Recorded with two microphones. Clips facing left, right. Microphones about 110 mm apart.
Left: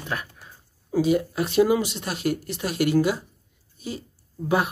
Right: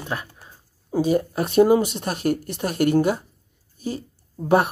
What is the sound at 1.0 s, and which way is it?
Speech, 40° right (ahead or behind).